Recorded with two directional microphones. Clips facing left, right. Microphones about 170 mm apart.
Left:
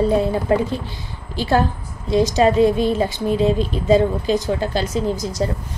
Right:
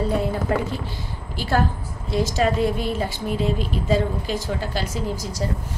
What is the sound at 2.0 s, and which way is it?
A woman's voice, 20° left (ahead or behind).